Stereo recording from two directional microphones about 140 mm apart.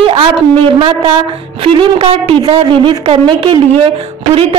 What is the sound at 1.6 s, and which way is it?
A woman's voice, 40° right (ahead or behind).